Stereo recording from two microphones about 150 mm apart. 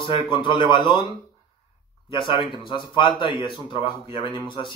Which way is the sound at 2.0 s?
35° left (ahead or behind).